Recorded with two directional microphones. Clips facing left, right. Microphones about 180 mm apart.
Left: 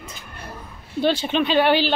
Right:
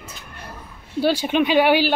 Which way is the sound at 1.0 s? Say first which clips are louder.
Right 2 dB; 10° right (ahead or behind).